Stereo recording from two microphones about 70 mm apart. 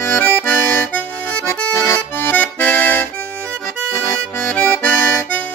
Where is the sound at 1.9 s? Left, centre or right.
Left.